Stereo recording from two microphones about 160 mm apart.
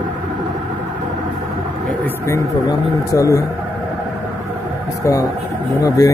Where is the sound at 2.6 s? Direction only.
20° left (ahead or behind).